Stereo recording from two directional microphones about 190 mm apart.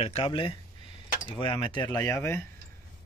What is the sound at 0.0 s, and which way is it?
Speech, 30° left (ahead or behind).